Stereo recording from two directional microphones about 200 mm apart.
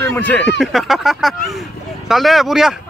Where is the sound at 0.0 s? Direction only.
10° left (ahead or behind).